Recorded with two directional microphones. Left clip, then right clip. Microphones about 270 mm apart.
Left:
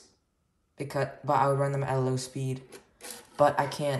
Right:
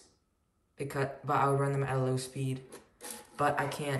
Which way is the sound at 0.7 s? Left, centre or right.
Centre.